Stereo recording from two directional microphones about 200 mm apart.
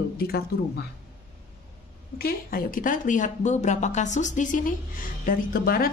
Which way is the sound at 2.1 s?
50° left (ahead or behind).